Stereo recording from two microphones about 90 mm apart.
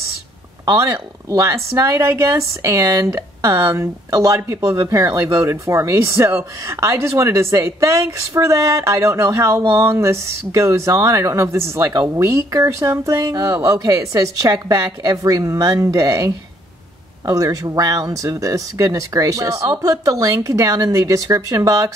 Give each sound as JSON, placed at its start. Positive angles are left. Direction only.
{"t": 0.7, "sound": "speech", "side_deg": -40}